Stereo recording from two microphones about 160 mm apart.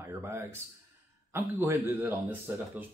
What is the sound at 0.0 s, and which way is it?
Speech, 15° right (ahead or behind).